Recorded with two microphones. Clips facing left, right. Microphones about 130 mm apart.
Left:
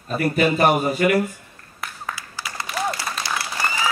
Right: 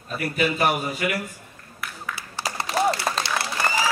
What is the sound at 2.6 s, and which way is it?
Applause, 35° right (ahead or behind).